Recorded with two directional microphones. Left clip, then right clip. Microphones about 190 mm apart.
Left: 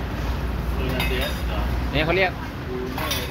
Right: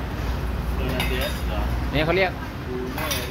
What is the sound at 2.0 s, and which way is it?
Speech, 25° right (ahead or behind).